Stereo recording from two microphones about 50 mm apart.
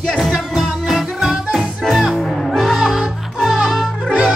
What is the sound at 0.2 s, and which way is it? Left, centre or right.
Music, centre.